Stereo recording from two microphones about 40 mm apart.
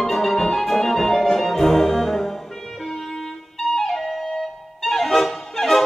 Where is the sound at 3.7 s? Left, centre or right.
Centre.